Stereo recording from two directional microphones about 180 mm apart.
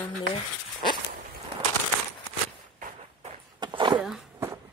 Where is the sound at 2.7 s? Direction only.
50° right (ahead or behind).